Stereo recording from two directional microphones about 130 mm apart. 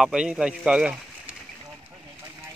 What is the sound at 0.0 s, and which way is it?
Speech, 5° right (ahead or behind).